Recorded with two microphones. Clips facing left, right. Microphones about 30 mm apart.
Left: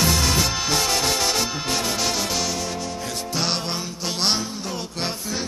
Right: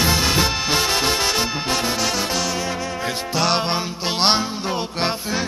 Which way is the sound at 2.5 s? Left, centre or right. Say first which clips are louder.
Right 3 dB; centre.